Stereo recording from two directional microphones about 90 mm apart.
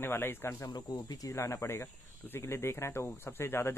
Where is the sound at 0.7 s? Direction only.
50° left (ahead or behind).